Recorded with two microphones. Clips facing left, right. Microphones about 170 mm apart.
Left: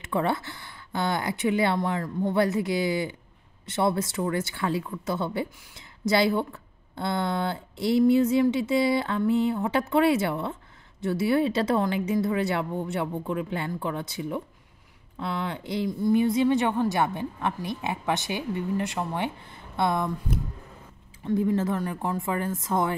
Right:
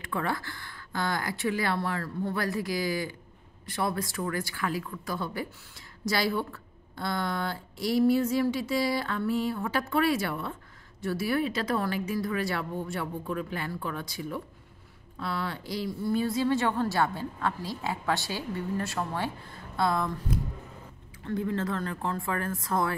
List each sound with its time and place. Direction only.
0.0 s a woman's voice: 25° left (ahead or behind)
21.3 s a woman's voice: 20° left (ahead or behind)